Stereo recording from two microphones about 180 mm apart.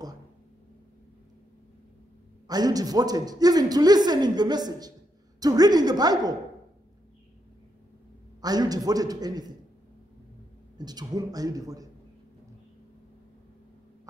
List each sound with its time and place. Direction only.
2.4 s a man's voice: 20° right (ahead or behind)
8.4 s a man's voice: 20° right (ahead or behind)
10.8 s a man's voice: 20° right (ahead or behind)